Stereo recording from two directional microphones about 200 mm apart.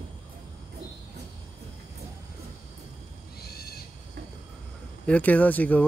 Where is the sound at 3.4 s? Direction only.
50° left (ahead or behind).